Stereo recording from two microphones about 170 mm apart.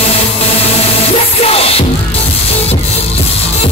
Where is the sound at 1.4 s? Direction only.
35° left (ahead or behind).